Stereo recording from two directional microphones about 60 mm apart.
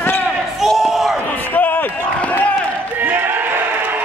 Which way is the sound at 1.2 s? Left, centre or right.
Left.